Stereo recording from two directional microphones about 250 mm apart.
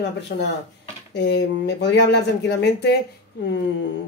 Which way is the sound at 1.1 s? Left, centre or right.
Left.